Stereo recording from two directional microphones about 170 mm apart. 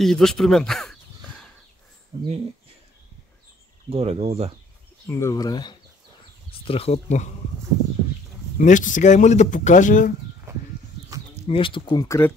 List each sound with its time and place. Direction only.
0.0 s speech: 5° left (ahead or behind)
3.9 s speech: 35° right (ahead or behind)
5.0 s speech: 15° left (ahead or behind); by 7.2 s 40° left (ahead or behind)
8.5 s speech: 50° left (ahead or behind)
11.4 s speech: 30° left (ahead or behind)